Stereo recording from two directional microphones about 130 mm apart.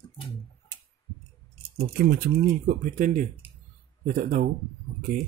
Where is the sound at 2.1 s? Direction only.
85° right.